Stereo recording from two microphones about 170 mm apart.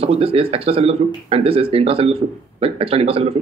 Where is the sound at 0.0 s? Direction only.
35° right (ahead or behind).